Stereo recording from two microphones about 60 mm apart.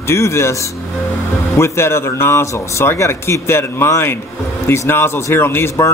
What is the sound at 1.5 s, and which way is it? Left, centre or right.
Speech, left.